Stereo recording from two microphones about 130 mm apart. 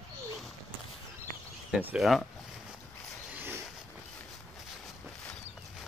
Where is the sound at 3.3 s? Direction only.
15° right (ahead or behind).